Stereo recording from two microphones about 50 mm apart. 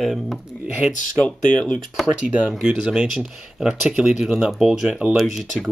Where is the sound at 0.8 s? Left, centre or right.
Centre.